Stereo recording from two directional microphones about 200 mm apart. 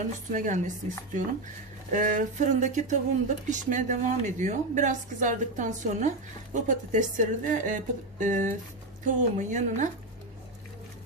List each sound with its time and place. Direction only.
0.3 s speech: 40° right (ahead or behind)